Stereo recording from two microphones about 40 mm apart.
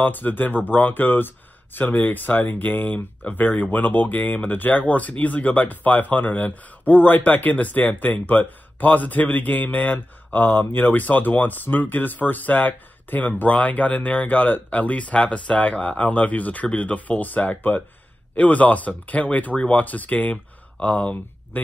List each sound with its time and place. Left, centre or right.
0.0 s speech: left
9.9 s speech: left